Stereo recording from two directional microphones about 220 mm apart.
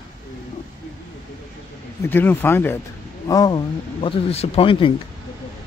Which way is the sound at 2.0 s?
10° left (ahead or behind).